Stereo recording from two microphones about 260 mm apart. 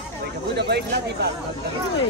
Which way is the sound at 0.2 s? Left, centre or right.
Right.